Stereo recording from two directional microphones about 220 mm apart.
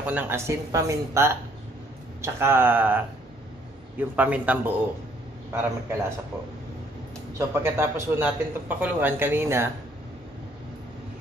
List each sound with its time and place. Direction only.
0.0 s a man's voice: 10° right (ahead or behind)
4.2 s a man's voice: 5° right (ahead or behind)
7.3 s a man's voice: 10° right (ahead or behind)